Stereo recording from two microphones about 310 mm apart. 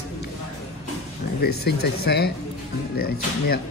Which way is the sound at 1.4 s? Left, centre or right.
Left.